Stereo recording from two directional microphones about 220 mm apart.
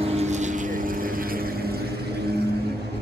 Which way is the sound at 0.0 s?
30° right (ahead or behind).